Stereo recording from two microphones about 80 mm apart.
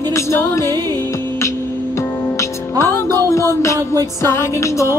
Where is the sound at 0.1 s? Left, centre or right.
Left.